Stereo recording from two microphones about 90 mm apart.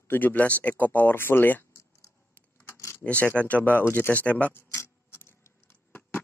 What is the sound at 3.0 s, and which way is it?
Speech, 15° left (ahead or behind).